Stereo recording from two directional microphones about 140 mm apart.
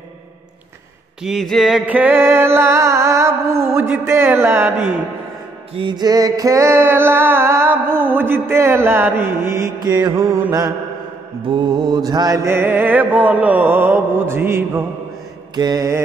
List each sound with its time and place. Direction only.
1.2 s a sound: centre (ahead or behind)
1.9 s music: 10° right (ahead or behind)
5.8 s music: 30° right (ahead or behind)
9.8 s mantra: 30° right (ahead or behind)
11.4 s music: 35° right (ahead or behind); by 14.9 s 15° right (ahead or behind)
15.5 s mantra: 30° right (ahead or behind)